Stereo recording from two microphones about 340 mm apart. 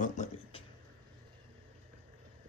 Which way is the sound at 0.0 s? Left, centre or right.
Centre.